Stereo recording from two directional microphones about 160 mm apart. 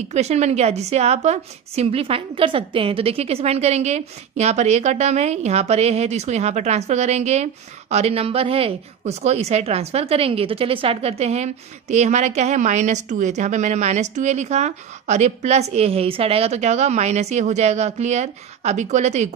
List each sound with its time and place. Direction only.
0.1 s a woman's voice: 45° right (ahead or behind)